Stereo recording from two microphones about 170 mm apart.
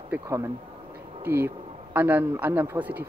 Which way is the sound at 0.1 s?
15° right (ahead or behind).